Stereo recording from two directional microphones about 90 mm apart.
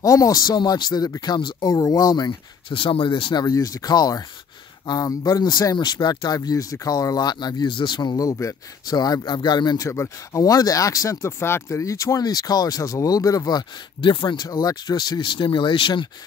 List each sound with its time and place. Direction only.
0.0 s speech: 40° left (ahead or behind)
2.7 s speech: 80° left
3.4 s speech: 40° left (ahead or behind)
9.8 s speech: 35° left (ahead or behind); by 16.1 s 65° left (ahead or behind)